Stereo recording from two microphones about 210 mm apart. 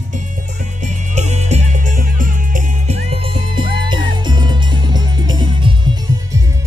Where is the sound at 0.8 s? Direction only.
35° right (ahead or behind).